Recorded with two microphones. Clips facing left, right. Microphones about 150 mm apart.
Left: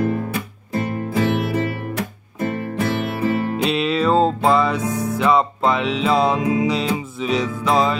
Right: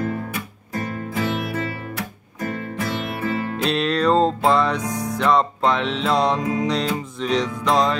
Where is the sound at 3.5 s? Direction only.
5° left (ahead or behind).